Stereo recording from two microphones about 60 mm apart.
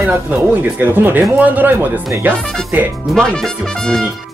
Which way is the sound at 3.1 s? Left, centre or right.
Centre.